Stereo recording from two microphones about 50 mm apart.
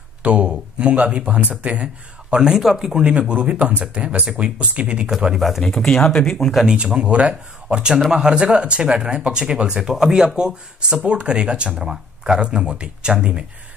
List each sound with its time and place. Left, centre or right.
0.2 s speech: right
2.3 s speech: centre
3.0 s speech: right
5.6 s speech: centre
6.6 s speech: centre